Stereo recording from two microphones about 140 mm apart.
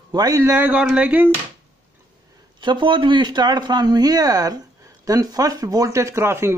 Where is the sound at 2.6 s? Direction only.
35° right (ahead or behind); by 6.5 s 20° right (ahead or behind).